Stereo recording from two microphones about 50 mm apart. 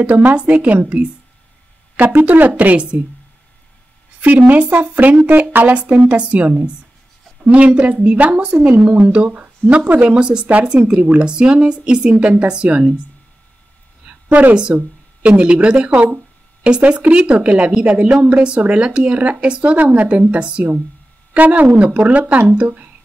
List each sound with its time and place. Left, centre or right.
0.2 s a woman's voice: right
4.2 s a woman's voice: right
10.0 s a woman's voice: centre
14.0 s a sound: right
15.2 s a woman's voice: right